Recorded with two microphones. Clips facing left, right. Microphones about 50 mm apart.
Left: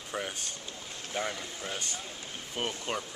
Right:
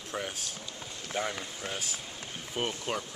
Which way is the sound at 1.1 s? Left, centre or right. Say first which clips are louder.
Right 1 dB; centre.